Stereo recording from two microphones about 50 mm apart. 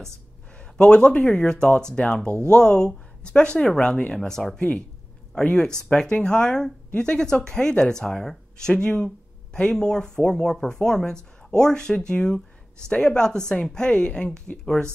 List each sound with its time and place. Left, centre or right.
0.6 s speech: left
4.3 s speech: centre
4.6 s speech: left
6.1 s speech: left